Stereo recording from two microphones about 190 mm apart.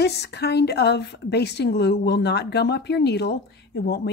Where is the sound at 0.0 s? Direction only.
60° left (ahead or behind).